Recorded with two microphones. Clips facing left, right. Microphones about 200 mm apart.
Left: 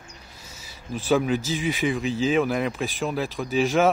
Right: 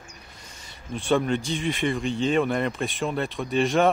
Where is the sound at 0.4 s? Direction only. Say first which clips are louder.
Left 1 dB; 5° left (ahead or behind).